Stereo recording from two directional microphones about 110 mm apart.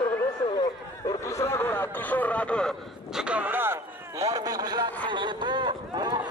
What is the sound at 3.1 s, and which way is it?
Speech, 10° right (ahead or behind).